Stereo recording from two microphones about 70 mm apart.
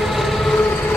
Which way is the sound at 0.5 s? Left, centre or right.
Left.